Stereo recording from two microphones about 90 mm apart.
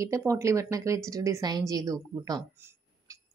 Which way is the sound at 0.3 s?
35° right (ahead or behind).